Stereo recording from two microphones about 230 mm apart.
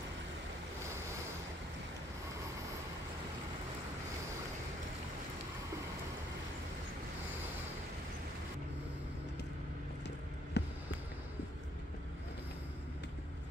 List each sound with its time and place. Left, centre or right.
10.6 s basketball bounce: left